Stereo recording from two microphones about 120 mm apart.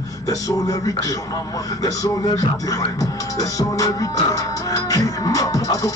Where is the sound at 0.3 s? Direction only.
30° left (ahead or behind).